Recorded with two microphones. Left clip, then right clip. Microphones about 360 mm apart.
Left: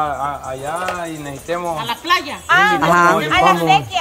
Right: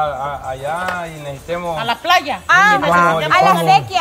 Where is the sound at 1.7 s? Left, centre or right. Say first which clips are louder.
Right 5 dB; centre.